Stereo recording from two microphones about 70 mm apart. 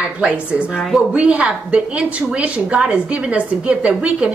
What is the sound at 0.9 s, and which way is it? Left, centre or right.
A woman's voice, centre.